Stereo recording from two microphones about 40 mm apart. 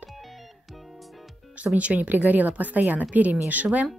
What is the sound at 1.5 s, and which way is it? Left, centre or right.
Speech, right.